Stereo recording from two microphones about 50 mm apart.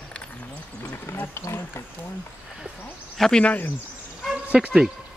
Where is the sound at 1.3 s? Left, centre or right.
Left.